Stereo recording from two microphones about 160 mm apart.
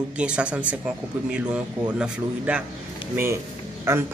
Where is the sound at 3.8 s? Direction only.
15° right (ahead or behind).